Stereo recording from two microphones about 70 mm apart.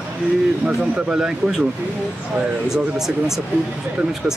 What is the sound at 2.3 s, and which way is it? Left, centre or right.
Speech, centre.